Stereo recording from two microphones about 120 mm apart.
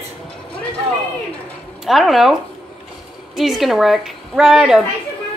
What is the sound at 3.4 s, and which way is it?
A woman's voice, centre (ahead or behind).